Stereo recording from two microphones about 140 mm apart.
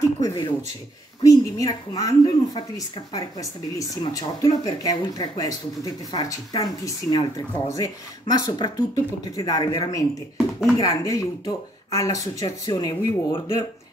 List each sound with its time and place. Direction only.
0.2 s speech: 25° left (ahead or behind)